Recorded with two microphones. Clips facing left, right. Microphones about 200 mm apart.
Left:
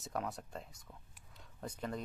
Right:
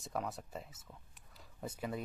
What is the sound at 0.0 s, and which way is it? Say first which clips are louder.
Speech: even; centre (ahead or behind).